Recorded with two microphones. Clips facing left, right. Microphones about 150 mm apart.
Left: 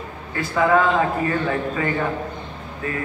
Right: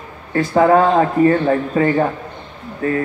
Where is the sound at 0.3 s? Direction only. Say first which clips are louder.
Right 6 dB; 40° right (ahead or behind).